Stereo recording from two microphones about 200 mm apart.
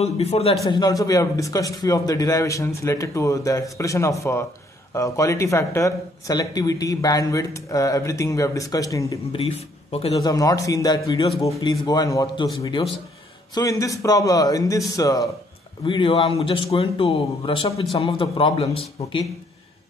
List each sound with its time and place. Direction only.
0.0 s a man's voice: 30° left (ahead or behind)
0.7 s speech: 20° left (ahead or behind)
10.2 s speech: 20° left (ahead or behind)
13.6 s speech: 15° left (ahead or behind)